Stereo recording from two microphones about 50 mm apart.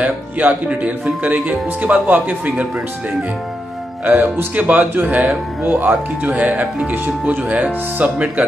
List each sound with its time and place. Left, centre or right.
0.0 s speech: right
4.0 s speech: right
5.6 s speech: right
6.2 s speech: right